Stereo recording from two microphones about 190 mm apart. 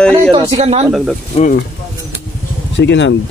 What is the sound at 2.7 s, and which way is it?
Speech, 70° left (ahead or behind).